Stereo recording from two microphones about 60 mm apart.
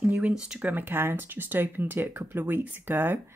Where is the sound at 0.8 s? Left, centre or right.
Right.